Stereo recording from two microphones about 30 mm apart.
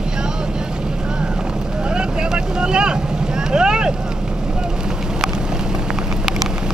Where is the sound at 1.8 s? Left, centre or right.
Right.